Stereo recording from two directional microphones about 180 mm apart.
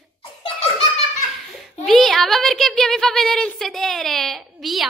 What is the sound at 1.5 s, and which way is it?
Speech, centre (ahead or behind).